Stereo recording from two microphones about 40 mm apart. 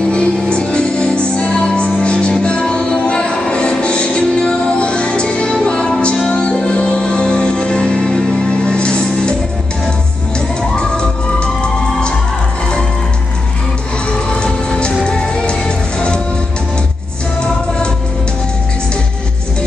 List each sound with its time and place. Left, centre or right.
0.1 s music: left
10.8 s a sound: left
14.1 s music: left